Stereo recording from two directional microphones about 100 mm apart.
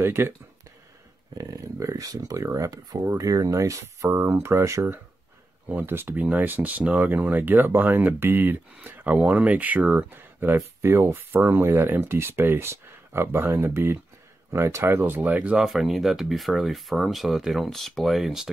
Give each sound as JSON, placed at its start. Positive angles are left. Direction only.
{"t": 0.0, "sound": "speech", "side_deg": -25}
{"t": 1.4, "sound": "speech", "side_deg": -35}